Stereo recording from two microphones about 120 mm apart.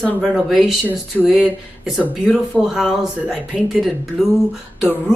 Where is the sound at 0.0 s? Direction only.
5° left (ahead or behind).